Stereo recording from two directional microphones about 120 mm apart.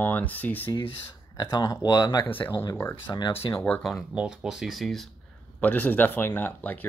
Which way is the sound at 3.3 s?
15° left (ahead or behind).